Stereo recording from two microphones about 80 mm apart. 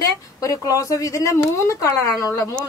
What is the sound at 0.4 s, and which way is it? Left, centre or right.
Speech, left.